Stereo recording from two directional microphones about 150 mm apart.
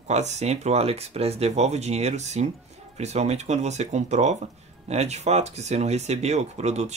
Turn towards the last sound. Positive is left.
turn(degrees=-45)  # may be behind; listen again after turning